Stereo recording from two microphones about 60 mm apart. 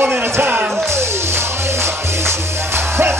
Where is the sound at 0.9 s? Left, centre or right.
Right.